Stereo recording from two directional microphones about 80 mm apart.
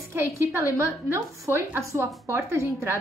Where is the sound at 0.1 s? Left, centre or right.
Right.